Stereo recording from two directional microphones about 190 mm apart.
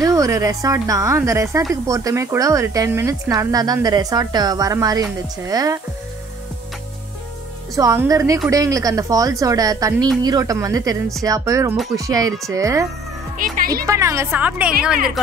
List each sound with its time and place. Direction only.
0.0 s speech: 15° right (ahead or behind)
7.7 s speech: 15° right (ahead or behind)
13.4 s speech: 45° right (ahead or behind)
13.8 s a woman's voice: 15° right (ahead or behind)